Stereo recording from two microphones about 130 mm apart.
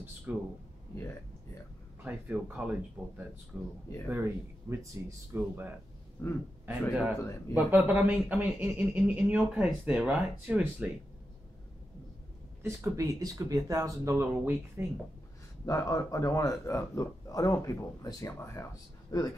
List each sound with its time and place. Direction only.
0.3 s speech: 15° right (ahead or behind)
2.0 s speech: 10° right (ahead or behind)
6.2 s speech: 10° left (ahead or behind)
7.2 s a man's voice: 25° left (ahead or behind)
7.5 s speech: 15° right (ahead or behind)
12.6 s speech: 20° right (ahead or behind)
15.6 s a man's voice: 30° left (ahead or behind)